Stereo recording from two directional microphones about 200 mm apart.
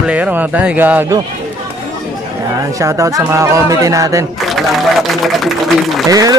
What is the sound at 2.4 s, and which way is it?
Speech, 15° right (ahead or behind).